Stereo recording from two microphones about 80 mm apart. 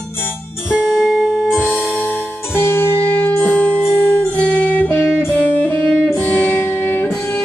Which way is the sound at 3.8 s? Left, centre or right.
Left.